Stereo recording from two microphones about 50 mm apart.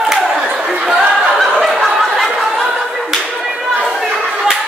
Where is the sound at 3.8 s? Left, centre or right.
Centre.